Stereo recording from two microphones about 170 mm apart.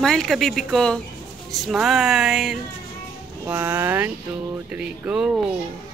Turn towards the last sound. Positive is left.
turn(degrees=-5)  # may be behind; listen again after turning